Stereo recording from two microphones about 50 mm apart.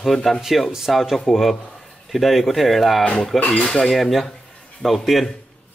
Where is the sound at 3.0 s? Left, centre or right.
Left.